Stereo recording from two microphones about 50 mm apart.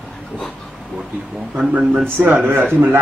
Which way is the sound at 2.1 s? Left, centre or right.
Right.